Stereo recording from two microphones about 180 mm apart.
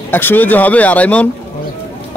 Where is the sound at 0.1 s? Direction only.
10° left (ahead or behind).